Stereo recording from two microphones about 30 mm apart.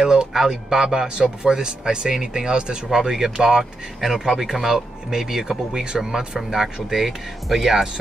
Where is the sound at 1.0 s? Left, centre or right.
Right.